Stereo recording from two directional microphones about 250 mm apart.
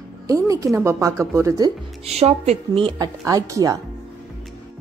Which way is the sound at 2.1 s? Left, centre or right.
Right.